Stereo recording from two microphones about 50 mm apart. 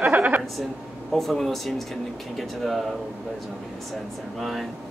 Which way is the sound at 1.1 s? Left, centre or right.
Centre.